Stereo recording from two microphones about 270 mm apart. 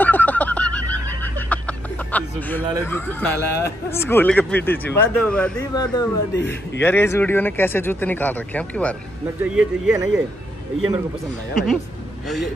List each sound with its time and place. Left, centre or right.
0.0 s a sound: centre
1.0 s speech: centre
6.3 s a man's voice: left
6.8 s speech: centre
11.5 s speech: centre